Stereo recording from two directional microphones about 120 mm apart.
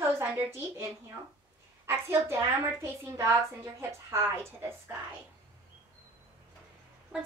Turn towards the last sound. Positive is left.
turn(degrees=-10)  # may be behind; listen again after turning